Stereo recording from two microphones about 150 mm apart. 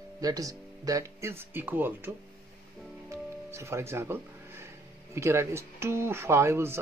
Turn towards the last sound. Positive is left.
turn(degrees=-15)  # may be behind; listen again after turning